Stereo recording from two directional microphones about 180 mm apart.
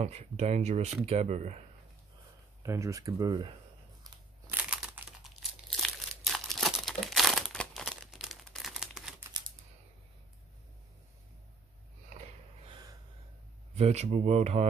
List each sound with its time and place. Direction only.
0.0 s speech: 35° right (ahead or behind)
2.6 s speech: 15° right (ahead or behind)
4.5 s crumpling: 10° right (ahead or behind)
13.7 s speech: 35° right (ahead or behind)